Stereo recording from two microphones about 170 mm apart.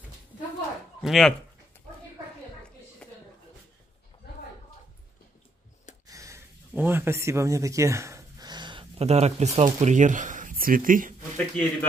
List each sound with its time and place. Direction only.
1.0 s speech: centre (ahead or behind)
6.0 s speech: 20° right (ahead or behind); by 11.1 s 55° right (ahead or behind)
11.3 s speech: 5° left (ahead or behind)